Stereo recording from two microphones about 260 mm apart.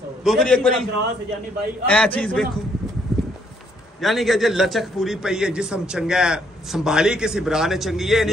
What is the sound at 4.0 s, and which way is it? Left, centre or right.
A man's voice, centre.